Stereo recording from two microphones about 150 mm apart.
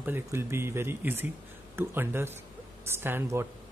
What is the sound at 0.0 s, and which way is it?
Speech, 15° right (ahead or behind).